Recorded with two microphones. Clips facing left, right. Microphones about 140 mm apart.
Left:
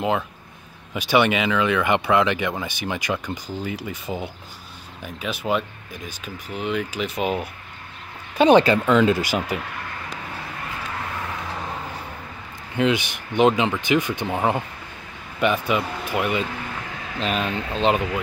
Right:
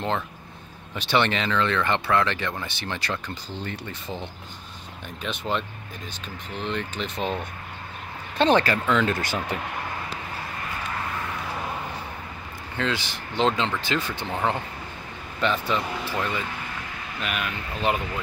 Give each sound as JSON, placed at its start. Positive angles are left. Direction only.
{"t": 0.9, "sound": "speech", "side_deg": 10}
{"t": 12.7, "sound": "speech", "side_deg": 15}
{"t": 17.2, "sound": "speech", "side_deg": 30}